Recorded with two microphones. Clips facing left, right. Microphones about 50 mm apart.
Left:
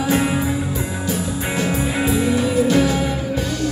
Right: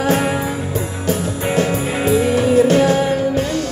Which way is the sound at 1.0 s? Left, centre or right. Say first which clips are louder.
Right 5 dB; right.